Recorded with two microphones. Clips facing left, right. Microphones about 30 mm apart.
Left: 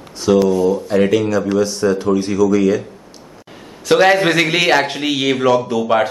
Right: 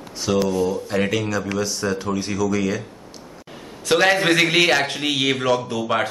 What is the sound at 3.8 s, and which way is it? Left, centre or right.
Speech, centre.